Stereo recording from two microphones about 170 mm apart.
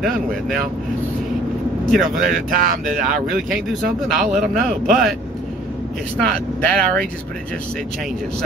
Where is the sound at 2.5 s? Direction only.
55° right (ahead or behind).